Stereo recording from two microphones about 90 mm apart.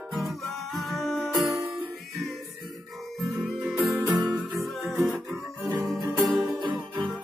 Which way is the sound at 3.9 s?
50° right (ahead or behind).